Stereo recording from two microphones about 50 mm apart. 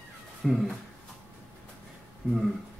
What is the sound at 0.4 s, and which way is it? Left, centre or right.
Speech, centre.